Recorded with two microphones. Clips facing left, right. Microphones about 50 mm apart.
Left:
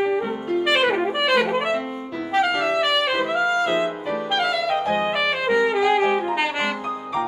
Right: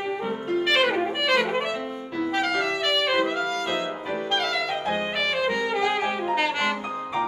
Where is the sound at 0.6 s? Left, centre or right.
Centre.